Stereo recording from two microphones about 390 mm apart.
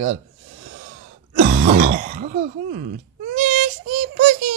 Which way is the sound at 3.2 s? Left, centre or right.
Centre.